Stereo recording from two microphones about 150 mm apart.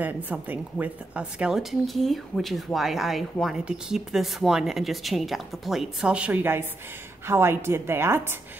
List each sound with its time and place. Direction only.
0.0 s a woman's voice: 10° right (ahead or behind)